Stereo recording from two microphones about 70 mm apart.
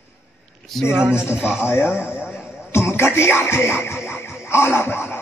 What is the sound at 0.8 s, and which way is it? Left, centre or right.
Speech, centre.